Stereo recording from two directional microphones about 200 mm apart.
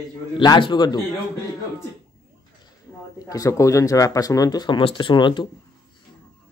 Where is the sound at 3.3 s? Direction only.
15° left (ahead or behind).